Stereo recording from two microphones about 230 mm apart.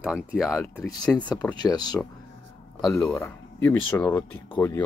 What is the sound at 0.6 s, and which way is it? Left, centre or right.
Speech, centre.